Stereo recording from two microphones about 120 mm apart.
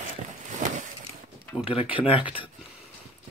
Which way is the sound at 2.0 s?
50° left (ahead or behind).